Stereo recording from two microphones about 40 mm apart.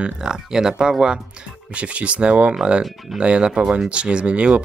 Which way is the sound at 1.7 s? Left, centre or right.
Right.